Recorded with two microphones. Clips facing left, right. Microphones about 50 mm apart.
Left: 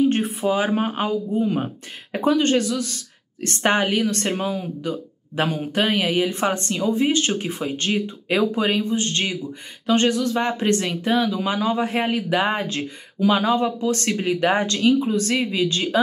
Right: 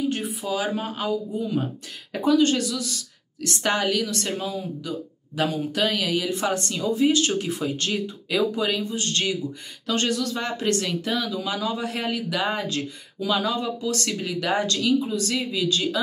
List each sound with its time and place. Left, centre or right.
0.1 s speech: left